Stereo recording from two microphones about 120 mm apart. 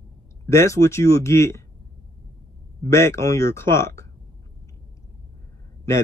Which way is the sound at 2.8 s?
25° left (ahead or behind).